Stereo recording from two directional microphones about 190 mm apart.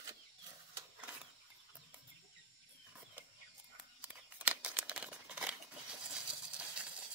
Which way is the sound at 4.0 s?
10° right (ahead or behind).